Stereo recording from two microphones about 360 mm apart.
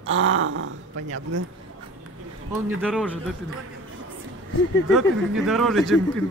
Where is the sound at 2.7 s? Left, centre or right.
Centre.